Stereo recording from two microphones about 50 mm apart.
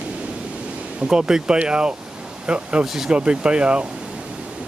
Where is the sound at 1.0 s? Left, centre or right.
Centre.